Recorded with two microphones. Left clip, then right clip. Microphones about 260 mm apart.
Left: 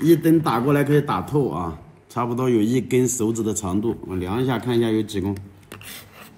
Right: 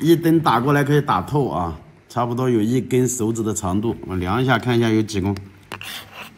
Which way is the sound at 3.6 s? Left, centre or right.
Right.